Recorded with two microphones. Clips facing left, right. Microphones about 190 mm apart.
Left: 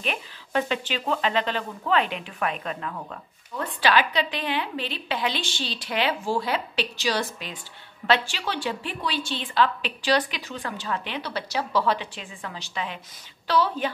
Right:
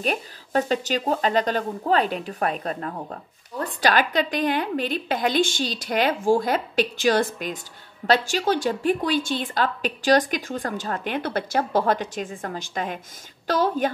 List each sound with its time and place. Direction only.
0.0 s speech: 40° right (ahead or behind)